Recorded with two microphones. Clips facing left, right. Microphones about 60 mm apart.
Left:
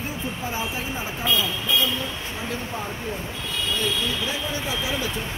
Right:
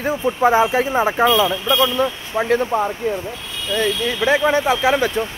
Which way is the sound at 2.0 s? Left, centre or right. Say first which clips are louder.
Right 11 dB; right.